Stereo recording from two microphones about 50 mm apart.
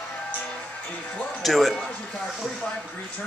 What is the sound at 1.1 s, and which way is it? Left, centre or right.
Speech, left.